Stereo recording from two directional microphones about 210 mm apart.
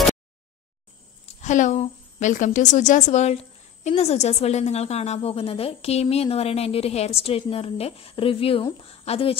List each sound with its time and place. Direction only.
1.2 s a woman's voice: 35° left (ahead or behind)